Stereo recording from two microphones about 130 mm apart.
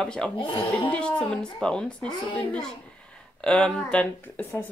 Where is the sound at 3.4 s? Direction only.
5° left (ahead or behind).